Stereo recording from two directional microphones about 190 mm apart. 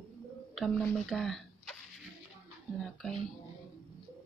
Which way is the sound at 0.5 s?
Centre (ahead or behind).